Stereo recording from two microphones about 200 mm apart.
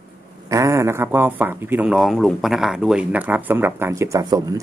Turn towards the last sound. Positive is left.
turn(degrees=-15)  # may be behind; listen again after turning